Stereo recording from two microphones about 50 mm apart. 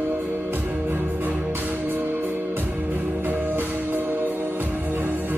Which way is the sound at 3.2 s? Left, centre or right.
Right.